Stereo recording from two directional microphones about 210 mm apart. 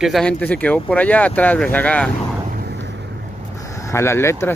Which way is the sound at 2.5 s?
50° right (ahead or behind).